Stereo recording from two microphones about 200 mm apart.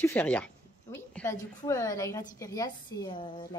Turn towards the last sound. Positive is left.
turn(degrees=20)  # may be behind; listen again after turning